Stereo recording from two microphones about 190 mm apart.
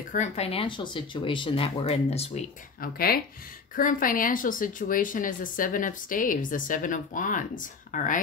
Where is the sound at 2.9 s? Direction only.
50° left (ahead or behind).